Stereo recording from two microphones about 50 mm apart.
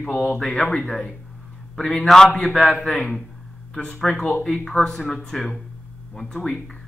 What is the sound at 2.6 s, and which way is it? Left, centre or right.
Speech, centre.